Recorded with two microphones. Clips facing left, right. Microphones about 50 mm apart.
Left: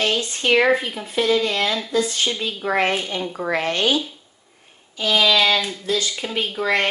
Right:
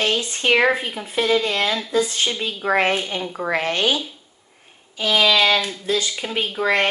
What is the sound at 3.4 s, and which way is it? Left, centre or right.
Speech, right.